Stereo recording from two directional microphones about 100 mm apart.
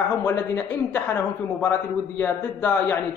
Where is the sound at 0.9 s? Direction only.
20° left (ahead or behind).